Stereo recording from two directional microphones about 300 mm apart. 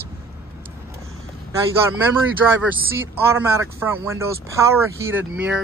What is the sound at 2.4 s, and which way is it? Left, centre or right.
Speech, centre.